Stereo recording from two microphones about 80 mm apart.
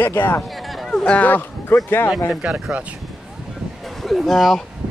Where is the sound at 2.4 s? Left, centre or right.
Centre.